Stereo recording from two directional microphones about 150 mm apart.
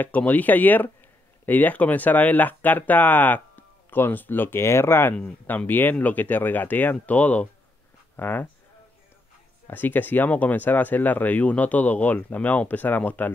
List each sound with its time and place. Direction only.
0.0 s speech: 10° left (ahead or behind)
9.7 s speech: 10° left (ahead or behind)